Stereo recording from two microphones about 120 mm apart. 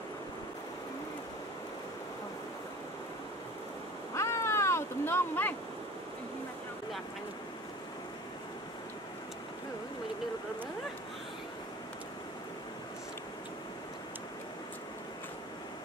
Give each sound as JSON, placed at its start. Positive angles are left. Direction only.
{"t": 4.1, "sound": "boat", "side_deg": 25}